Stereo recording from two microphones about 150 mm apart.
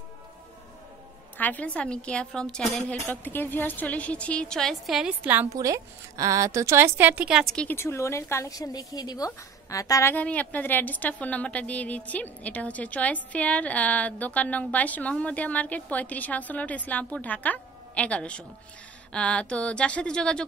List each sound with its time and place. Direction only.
1.4 s a woman's voice: 10° left (ahead or behind)
5.2 s a woman's voice: 15° right (ahead or behind)
7.5 s a woman's voice: 15° left (ahead or behind)
10.1 s a woman's voice: 10° left (ahead or behind)